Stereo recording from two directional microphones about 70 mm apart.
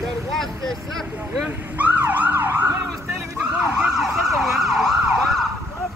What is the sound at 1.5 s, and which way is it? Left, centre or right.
Speech, right.